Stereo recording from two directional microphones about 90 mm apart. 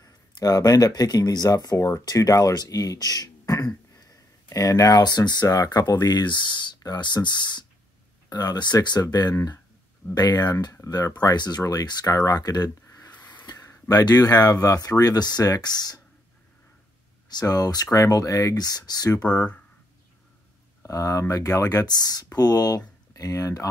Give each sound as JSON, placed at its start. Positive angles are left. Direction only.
{"t": 0.0, "sound": "speech", "side_deg": 45}
{"t": 11.1, "sound": "speech", "side_deg": 40}
{"t": 14.0, "sound": "speech", "side_deg": 40}
{"t": 17.3, "sound": "speech", "side_deg": 45}
{"t": 19.2, "sound": "speech", "side_deg": 15}
{"t": 20.8, "sound": "speech", "side_deg": 40}